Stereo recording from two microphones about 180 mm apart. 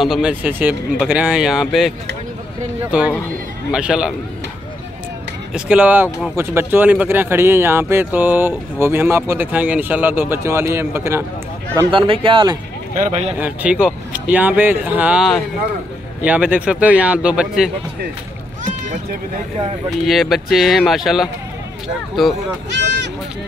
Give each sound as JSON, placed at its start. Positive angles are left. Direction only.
{"t": 0.0, "sound": "speech", "side_deg": -5}
{"t": 5.5, "sound": "speech", "side_deg": -5}
{"t": 11.9, "sound": "speech", "side_deg": -30}
{"t": 12.9, "sound": "speech", "side_deg": -40}
{"t": 13.4, "sound": "speech", "side_deg": -5}
{"t": 20.1, "sound": "speech", "side_deg": 0}
{"t": 22.8, "sound": "speech", "side_deg": -75}